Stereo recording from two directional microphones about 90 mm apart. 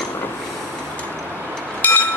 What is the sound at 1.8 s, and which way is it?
Vehicle, 15° left (ahead or behind).